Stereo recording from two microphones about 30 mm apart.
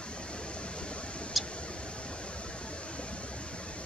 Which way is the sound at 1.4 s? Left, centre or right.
Centre.